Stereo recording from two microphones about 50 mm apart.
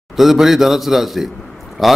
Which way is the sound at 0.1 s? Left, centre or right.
Centre.